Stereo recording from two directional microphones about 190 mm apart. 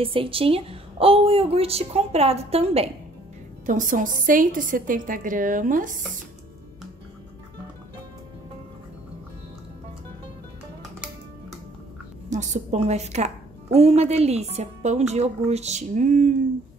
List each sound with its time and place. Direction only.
0.0 s a woman's voice: 30° right (ahead or behind)
3.6 s a woman's voice: 45° right (ahead or behind)
12.3 s a woman's voice: 40° right (ahead or behind)